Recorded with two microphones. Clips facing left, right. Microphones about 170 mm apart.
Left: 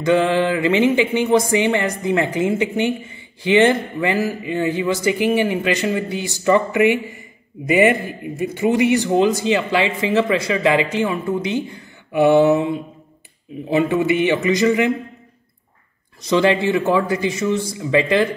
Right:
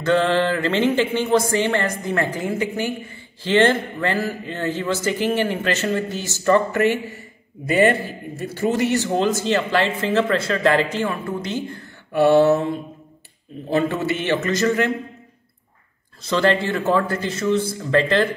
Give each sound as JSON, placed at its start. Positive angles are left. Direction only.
{"t": 0.0, "sound": "speech", "side_deg": 10}
{"t": 16.2, "sound": "speech", "side_deg": 15}